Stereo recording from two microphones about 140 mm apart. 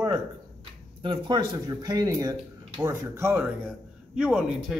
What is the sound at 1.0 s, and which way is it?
A man's voice, 35° right (ahead or behind).